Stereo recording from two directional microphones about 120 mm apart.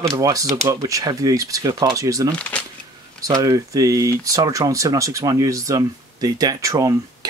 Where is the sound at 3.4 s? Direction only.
30° right (ahead or behind).